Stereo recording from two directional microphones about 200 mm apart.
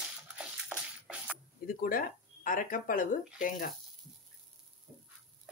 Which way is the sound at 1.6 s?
45° left (ahead or behind).